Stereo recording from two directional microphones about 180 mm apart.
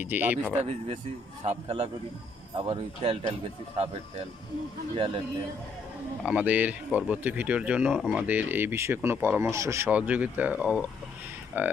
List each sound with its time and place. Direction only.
0.0 s speech: 10° right (ahead or behind)
1.4 s speech: 35° right (ahead or behind)
4.9 s speech: 30° right (ahead or behind)
6.2 s speech: 5° right (ahead or behind)